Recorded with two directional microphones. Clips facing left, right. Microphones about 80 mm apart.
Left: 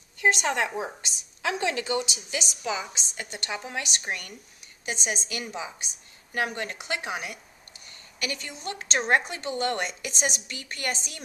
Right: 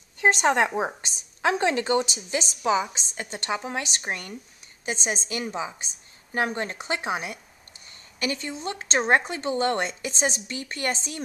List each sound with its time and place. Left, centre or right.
0.2 s speech: right